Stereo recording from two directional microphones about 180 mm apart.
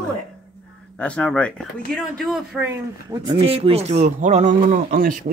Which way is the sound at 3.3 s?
30° right (ahead or behind).